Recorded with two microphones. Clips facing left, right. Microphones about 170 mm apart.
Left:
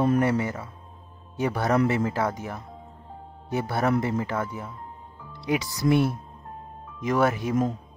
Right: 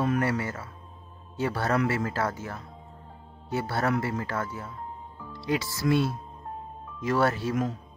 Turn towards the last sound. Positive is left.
turn(degrees=15)  # may be behind; listen again after turning